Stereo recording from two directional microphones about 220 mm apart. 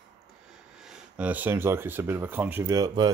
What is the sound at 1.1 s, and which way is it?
Speech, 5° right (ahead or behind).